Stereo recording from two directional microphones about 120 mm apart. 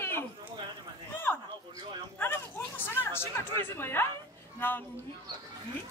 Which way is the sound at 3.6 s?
20° left (ahead or behind).